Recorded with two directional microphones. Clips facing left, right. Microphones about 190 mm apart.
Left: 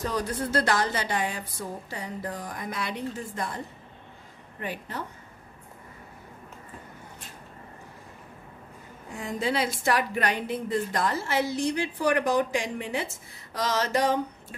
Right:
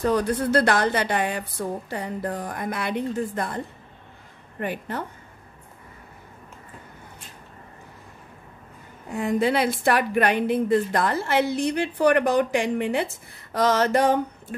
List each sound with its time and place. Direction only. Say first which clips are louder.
0.0 s a woman's voice: right 7 dB; 60° right (ahead or behind)
9.1 s a woman's voice: right 7 dB; 60° right (ahead or behind)